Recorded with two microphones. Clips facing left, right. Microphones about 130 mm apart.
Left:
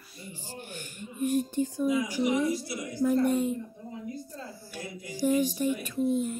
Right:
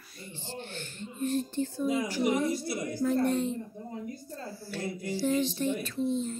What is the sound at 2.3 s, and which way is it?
Speech, 50° right (ahead or behind).